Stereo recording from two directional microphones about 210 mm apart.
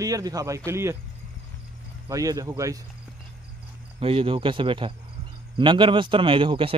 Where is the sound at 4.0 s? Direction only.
25° right (ahead or behind).